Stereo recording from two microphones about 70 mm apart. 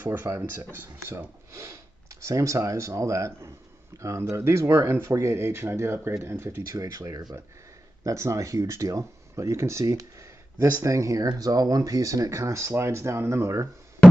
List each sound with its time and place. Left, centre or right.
0.0 s speech: right
6.7 s speech: right